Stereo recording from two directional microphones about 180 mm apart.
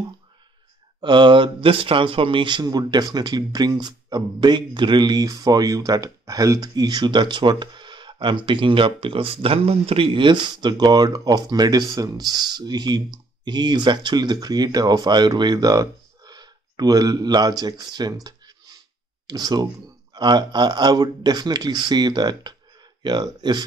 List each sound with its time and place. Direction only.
1.0 s speech: 25° right (ahead or behind)